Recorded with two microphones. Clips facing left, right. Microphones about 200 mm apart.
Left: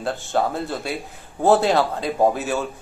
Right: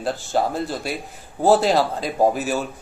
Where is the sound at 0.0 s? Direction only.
Centre (ahead or behind).